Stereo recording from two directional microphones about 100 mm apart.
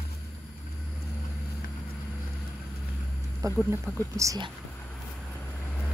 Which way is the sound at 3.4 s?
35° right (ahead or behind).